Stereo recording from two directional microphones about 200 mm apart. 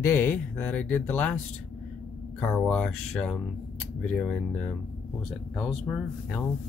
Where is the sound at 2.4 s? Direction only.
5° left (ahead or behind).